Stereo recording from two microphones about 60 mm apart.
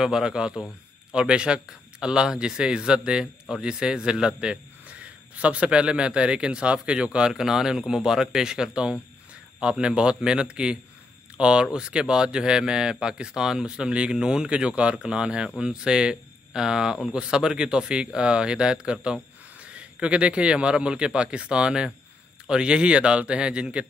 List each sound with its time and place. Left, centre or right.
0.0 s a man's voice: centre